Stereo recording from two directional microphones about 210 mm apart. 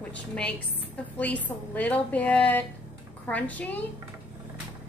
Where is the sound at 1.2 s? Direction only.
5° left (ahead or behind).